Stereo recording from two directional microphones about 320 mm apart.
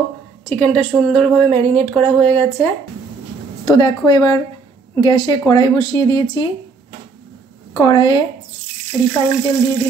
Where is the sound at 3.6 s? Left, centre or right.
Centre.